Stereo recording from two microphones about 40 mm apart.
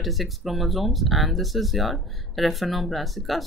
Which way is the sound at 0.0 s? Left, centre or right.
Centre.